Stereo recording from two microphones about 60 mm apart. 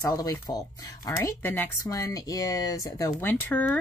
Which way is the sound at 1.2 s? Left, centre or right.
Left.